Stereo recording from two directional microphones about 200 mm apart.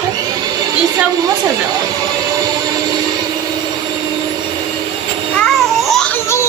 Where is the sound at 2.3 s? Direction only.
20° right (ahead or behind).